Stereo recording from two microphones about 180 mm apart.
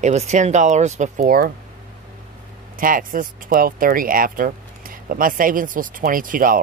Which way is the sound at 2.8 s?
50° right (ahead or behind).